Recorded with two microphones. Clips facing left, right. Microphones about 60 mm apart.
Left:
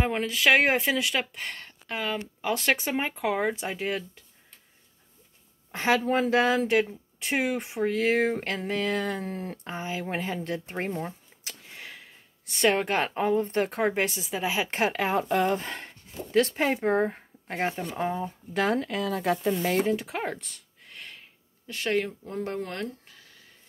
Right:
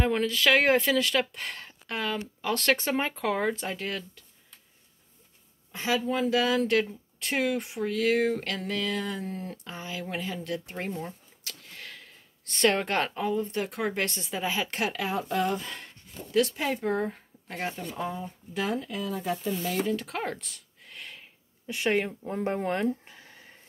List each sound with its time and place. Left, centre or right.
0.0 s speech: centre
5.7 s speech: left
6.6 s speech: centre
13.1 s speech: left
14.1 s speech: centre
14.7 s speech: left
20.0 s a sound: centre
21.6 s speech: centre